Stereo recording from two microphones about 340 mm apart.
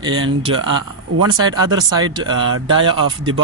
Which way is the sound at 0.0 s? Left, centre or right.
Right.